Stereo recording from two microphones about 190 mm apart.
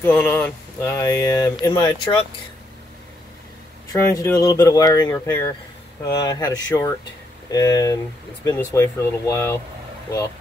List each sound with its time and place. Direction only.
0.0 s speech: 10° left (ahead or behind)
3.9 s speech: 15° left (ahead or behind)